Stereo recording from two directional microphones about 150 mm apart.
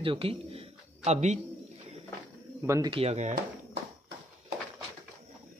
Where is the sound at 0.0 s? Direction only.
35° right (ahead or behind).